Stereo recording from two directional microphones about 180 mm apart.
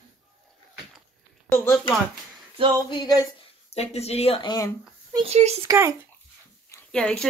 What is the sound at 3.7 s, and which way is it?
Speech, 35° left (ahead or behind).